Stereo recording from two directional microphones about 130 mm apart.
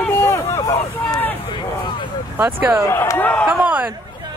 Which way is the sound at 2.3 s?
15° right (ahead or behind).